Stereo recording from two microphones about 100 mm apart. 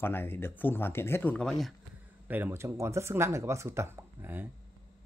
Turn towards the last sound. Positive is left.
turn(degrees=-25)  # may be behind; listen again after turning